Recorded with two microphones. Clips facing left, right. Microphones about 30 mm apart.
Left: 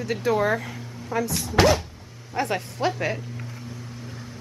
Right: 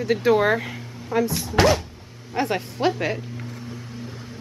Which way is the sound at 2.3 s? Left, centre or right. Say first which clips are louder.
Right 2 dB; centre.